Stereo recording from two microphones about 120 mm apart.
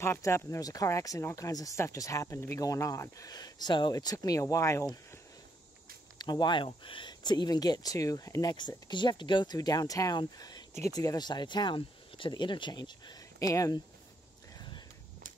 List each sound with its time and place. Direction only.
0.0 s speech: 20° left (ahead or behind)
6.1 s speech: 35° left (ahead or behind)